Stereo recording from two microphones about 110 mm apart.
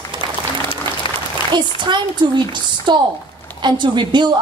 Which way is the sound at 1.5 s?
45° right (ahead or behind).